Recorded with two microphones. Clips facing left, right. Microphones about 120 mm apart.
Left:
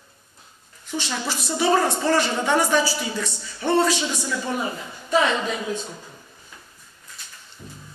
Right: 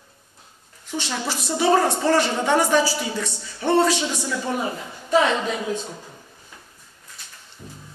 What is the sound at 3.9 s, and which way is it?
Speech, 60° right (ahead or behind).